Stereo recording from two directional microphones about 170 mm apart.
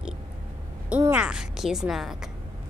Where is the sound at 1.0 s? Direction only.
10° right (ahead or behind).